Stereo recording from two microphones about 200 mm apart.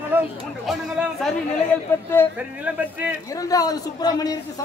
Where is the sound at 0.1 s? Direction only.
10° right (ahead or behind).